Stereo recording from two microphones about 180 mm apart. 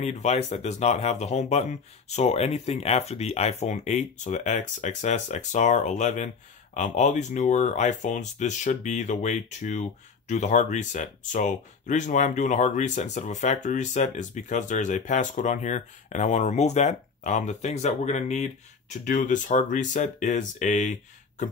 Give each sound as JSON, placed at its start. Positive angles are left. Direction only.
{"t": 0.0, "sound": "speech", "side_deg": 40}